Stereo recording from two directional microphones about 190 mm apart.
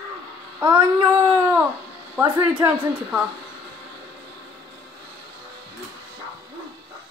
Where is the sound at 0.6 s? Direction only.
25° right (ahead or behind).